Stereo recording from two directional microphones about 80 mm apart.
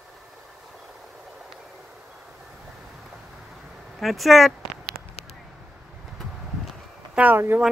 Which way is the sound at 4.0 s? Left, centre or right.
Centre.